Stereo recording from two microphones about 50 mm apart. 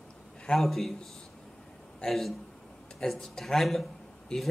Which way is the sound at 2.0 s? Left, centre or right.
Centre.